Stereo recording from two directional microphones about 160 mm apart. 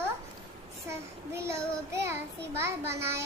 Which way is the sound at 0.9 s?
15° right (ahead or behind).